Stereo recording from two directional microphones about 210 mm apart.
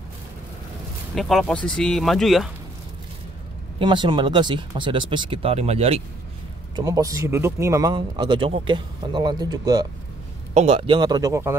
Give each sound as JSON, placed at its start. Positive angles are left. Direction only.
{"t": 1.1, "sound": "speech", "side_deg": 0}
{"t": 3.8, "sound": "speech", "side_deg": -20}
{"t": 6.7, "sound": "speech", "side_deg": -15}
{"t": 10.5, "sound": "speech", "side_deg": -30}